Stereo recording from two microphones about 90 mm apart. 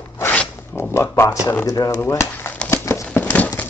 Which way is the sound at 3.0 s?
15° left (ahead or behind).